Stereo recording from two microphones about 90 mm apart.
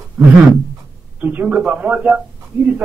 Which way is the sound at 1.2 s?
15° right (ahead or behind).